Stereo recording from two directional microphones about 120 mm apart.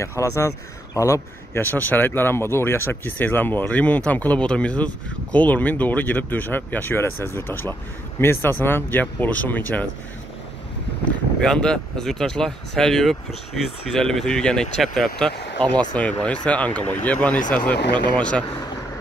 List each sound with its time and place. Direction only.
0.2 s speech: 25° left (ahead or behind)
11.4 s speech: 5° left (ahead or behind)